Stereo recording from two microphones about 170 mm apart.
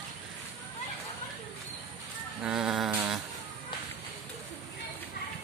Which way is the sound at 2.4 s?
5° right (ahead or behind).